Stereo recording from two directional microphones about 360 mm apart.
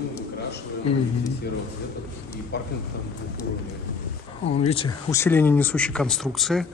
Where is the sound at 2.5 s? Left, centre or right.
Left.